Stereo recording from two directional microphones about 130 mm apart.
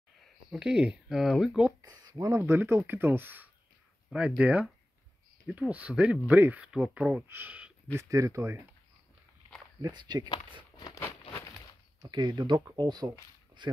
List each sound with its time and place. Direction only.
0.5 s speech: 5° right (ahead or behind)
1.8 s speech: 25° right (ahead or behind)
7.9 s speech: 25° right (ahead or behind)
9.8 s speech: 35° right (ahead or behind)
11.0 s a sound: 15° left (ahead or behind)
12.0 s speech: 35° right (ahead or behind)